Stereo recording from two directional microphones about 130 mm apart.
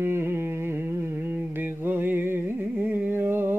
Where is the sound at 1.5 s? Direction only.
15° right (ahead or behind).